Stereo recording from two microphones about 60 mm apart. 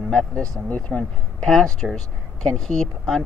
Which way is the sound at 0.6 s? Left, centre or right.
Left.